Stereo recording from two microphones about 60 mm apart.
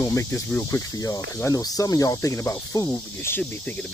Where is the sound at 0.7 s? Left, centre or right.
Left.